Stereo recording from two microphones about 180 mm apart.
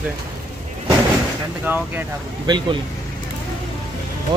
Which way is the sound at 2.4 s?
25° right (ahead or behind).